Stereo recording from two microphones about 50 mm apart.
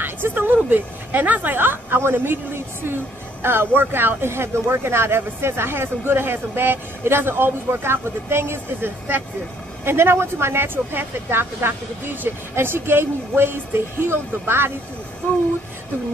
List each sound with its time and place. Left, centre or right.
0.0 s speech: right
2.0 s speech: right